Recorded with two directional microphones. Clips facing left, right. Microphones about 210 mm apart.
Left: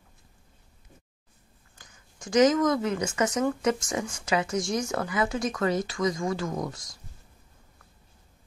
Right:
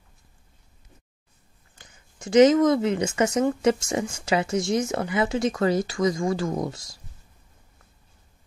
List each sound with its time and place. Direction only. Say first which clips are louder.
2.2 s speech: right 5 dB; 25° right (ahead or behind)